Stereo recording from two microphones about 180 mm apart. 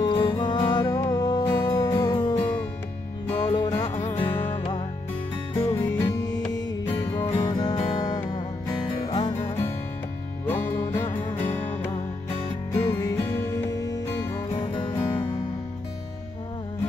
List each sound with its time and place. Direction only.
0.0 s music: 25° left (ahead or behind)
3.3 s music: 25° left (ahead or behind)
4.0 s music: 35° left (ahead or behind)
10.7 s music: 15° left (ahead or behind)